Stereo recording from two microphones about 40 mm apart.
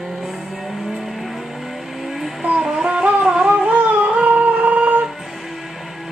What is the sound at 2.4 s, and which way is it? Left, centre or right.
Music, centre.